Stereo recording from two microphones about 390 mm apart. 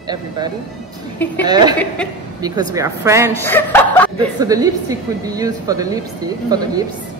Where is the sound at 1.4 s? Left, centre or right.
Centre.